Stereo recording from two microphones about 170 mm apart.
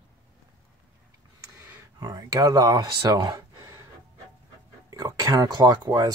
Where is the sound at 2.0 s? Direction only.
25° right (ahead or behind).